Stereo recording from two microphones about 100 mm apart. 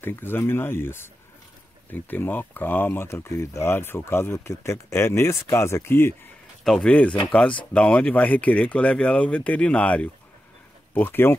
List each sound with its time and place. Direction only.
0.0 s speech: 20° left (ahead or behind)
6.6 s speech: 5° left (ahead or behind); by 11.3 s 20° left (ahead or behind)